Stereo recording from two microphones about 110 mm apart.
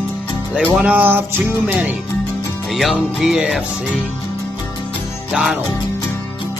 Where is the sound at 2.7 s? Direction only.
Centre (ahead or behind).